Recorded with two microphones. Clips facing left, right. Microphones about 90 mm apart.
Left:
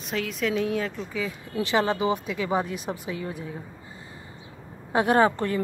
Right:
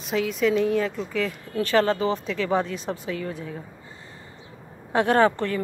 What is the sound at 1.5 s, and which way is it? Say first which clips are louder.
Speech: right 3 dB; 15° left (ahead or behind).